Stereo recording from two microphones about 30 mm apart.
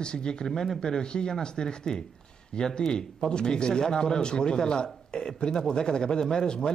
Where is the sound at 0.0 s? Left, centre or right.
Left.